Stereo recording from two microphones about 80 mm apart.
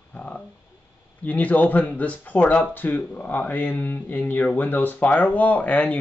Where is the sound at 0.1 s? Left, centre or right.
Centre.